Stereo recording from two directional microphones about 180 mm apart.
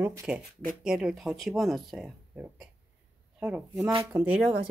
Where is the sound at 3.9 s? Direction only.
30° right (ahead or behind).